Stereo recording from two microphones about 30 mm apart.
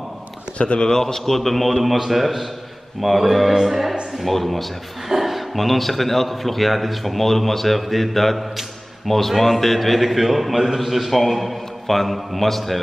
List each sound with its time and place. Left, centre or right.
0.6 s speech: left
1.0 s a man's voice: centre
10.8 s a man's voice: centre